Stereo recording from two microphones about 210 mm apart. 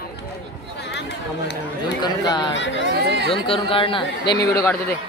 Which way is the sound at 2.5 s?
60° left (ahead or behind).